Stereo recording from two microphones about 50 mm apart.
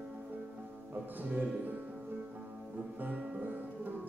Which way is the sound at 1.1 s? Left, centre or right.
Right.